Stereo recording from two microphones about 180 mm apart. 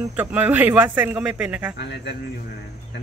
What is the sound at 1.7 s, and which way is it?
Speech, 70° left (ahead or behind).